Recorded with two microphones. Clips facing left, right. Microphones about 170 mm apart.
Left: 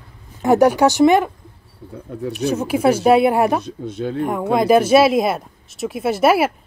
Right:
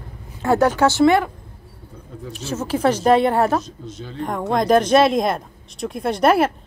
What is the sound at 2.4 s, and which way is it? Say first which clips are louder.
Speech: left 3 dB; 10° left (ahead or behind).